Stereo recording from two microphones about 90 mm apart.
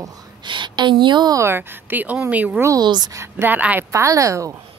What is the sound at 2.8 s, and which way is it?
Speech, 55° right (ahead or behind).